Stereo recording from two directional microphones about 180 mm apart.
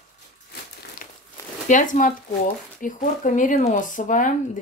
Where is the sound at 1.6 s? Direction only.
45° left (ahead or behind).